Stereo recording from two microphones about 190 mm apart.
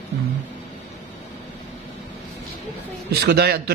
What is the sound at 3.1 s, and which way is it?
Speech, 55° right (ahead or behind).